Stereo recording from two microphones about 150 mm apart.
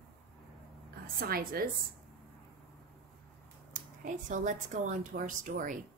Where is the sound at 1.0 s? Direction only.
75° right (ahead or behind).